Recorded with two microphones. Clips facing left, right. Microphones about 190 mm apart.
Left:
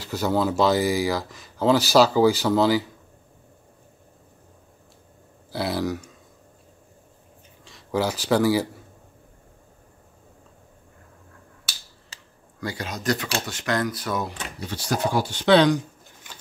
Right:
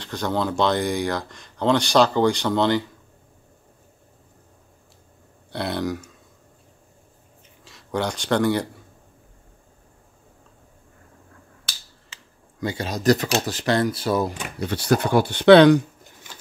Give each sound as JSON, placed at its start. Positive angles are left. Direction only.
{"t": 0.0, "sound": "speech", "side_deg": 5}
{"t": 5.5, "sound": "speech", "side_deg": 0}
{"t": 7.6, "sound": "speech", "side_deg": 0}
{"t": 12.1, "sound": "a sound", "side_deg": 35}
{"t": 12.5, "sound": "speech", "side_deg": -25}
{"t": 14.6, "sound": "speech", "side_deg": -60}